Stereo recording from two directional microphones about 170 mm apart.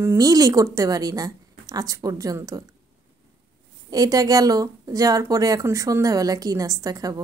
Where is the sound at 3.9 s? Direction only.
20° right (ahead or behind).